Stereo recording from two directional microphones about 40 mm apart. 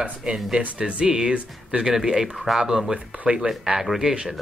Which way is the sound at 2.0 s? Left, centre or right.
Centre.